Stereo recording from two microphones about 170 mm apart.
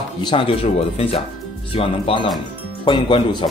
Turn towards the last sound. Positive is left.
turn(degrees=30)  # may be behind; listen again after turning